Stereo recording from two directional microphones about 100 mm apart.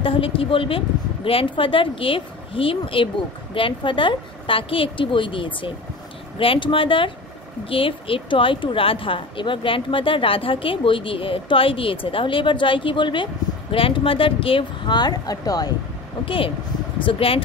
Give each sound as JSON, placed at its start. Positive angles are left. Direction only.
{"t": 0.0, "sound": "a woman's voice", "side_deg": 65}
{"t": 15.0, "sound": "speech", "side_deg": 40}
{"t": 16.3, "sound": "a woman's voice", "side_deg": 65}